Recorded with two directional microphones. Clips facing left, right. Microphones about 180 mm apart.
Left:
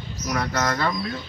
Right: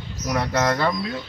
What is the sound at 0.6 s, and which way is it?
Speech, 20° right (ahead or behind).